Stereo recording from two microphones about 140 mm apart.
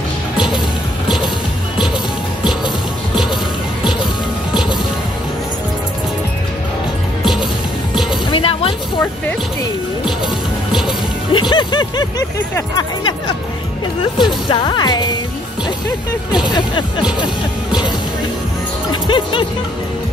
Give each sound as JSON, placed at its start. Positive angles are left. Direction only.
{"t": 8.3, "sound": "a sound", "side_deg": 40}
{"t": 11.3, "sound": "music", "side_deg": 35}
{"t": 14.1, "sound": "music", "side_deg": 35}
{"t": 18.9, "sound": "music", "side_deg": 35}